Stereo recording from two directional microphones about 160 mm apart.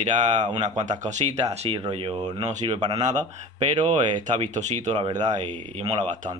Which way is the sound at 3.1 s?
50° right (ahead or behind).